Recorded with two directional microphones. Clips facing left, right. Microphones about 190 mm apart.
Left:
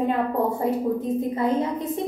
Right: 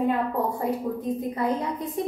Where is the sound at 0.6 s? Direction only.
25° left (ahead or behind).